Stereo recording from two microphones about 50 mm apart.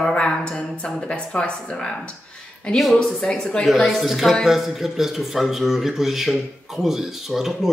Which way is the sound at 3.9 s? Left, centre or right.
Centre.